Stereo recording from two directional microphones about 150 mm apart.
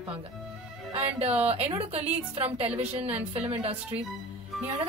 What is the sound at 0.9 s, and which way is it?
A woman's voice, 40° right (ahead or behind).